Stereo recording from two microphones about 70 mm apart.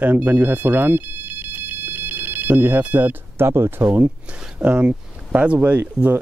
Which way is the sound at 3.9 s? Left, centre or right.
Right.